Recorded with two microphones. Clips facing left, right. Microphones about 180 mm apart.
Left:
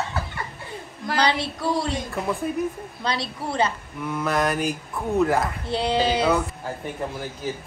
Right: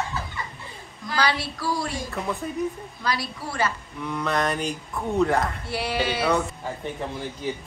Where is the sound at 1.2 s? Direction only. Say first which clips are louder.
Left 2 dB; 20° left (ahead or behind).